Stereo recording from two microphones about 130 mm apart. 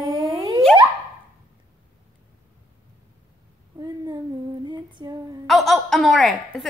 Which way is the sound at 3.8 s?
30° right (ahead or behind).